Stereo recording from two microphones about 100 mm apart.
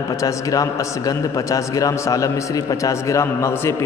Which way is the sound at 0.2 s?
35° left (ahead or behind).